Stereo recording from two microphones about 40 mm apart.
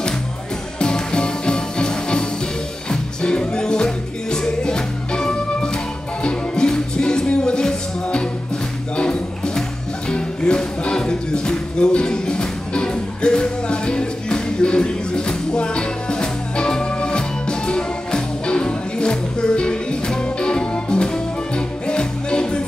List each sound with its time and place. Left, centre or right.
0.7 s music: left